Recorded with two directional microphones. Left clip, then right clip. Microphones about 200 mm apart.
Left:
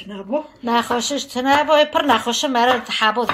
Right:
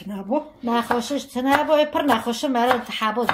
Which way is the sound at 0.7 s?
Centre (ahead or behind).